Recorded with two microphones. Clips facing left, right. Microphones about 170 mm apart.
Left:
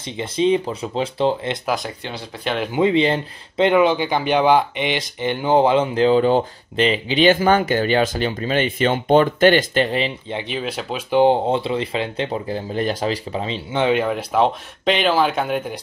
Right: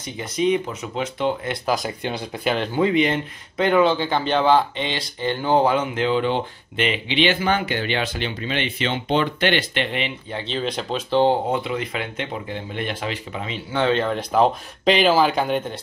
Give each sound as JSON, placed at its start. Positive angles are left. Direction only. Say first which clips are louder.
{"t": 0.0, "sound": "speech", "louder": "left 3 dB", "side_deg": 25}
{"t": 2.4, "sound": "speech", "louder": "even", "side_deg": 0}
{"t": 2.7, "sound": "speech", "louder": "left 4 dB", "side_deg": 25}
{"t": 5.9, "sound": "speech", "louder": "left 6 dB", "side_deg": 35}
{"t": 10.3, "sound": "speech", "louder": "even", "side_deg": 10}
{"t": 11.5, "sound": "speech", "louder": "left 3 dB", "side_deg": 30}